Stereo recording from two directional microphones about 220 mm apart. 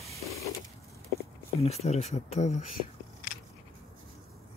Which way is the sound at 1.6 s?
30° left (ahead or behind).